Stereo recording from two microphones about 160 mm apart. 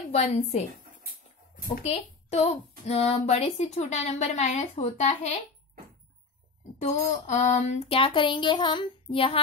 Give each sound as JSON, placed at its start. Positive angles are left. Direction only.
{"t": 0.1, "sound": "a woman's voice", "side_deg": 40}
{"t": 1.8, "sound": "a woman's voice", "side_deg": 40}
{"t": 6.8, "sound": "speech", "side_deg": 45}